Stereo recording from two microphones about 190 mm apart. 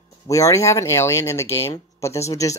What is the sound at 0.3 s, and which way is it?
Speech, 15° left (ahead or behind).